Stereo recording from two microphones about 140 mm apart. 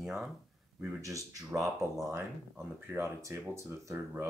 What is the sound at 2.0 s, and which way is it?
Speech, 20° right (ahead or behind).